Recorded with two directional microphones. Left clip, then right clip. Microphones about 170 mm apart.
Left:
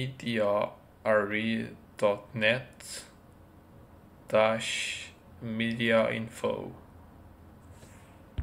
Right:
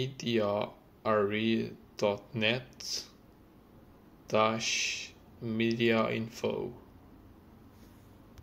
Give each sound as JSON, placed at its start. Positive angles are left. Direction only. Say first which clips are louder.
{"t": 0.0, "sound": "speech", "louder": "left 1 dB", "side_deg": -45}
{"t": 4.3, "sound": "speech", "louder": "left 3 dB", "side_deg": -45}